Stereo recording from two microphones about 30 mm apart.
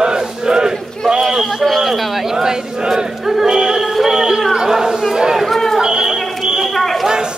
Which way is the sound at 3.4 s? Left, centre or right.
Right.